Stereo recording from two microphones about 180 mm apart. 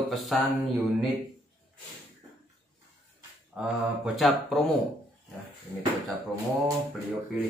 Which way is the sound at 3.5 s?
5° right (ahead or behind).